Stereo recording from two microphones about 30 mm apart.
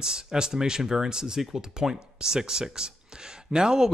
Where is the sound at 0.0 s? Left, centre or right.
Right.